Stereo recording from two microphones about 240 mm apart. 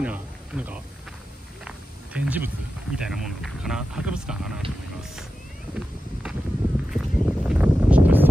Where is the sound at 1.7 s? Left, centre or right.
Centre.